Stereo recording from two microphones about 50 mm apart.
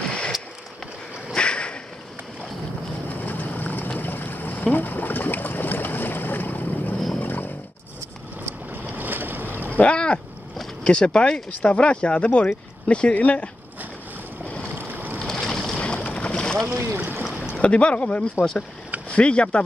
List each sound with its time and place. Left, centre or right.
1.3 s whip: centre
3.2 s vehicle: left
4.0 s boat: left
7.2 s a sound: left
8.9 s boat: right
9.8 s a sound: left
10.8 s speech: centre
14.8 s boat: right
15.1 s boat: centre
15.8 s boat: left
16.6 s boat: right
17.6 s speech: left